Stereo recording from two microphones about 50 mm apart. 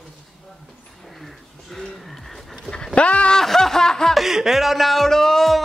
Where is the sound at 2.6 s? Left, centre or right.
Centre.